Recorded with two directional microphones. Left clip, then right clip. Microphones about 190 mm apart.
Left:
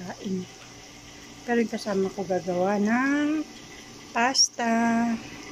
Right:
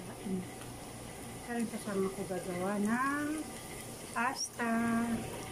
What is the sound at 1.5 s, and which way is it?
Speech, 40° left (ahead or behind).